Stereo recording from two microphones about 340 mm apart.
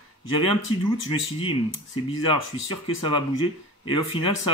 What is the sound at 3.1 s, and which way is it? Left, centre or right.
Speech, centre.